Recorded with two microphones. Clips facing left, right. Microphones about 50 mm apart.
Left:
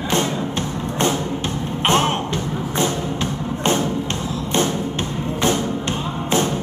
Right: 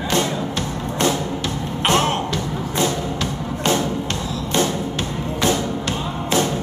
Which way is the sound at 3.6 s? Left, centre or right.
Left.